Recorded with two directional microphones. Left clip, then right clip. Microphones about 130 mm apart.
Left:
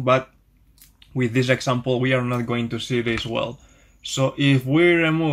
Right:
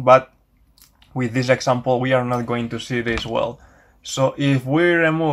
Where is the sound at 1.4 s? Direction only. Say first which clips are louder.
Right 6 dB; 35° left (ahead or behind).